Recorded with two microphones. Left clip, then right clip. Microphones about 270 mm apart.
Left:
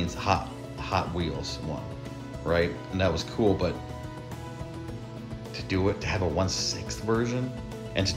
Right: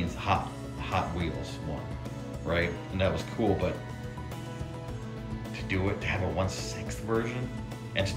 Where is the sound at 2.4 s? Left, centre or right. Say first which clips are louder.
Left 4 dB; centre.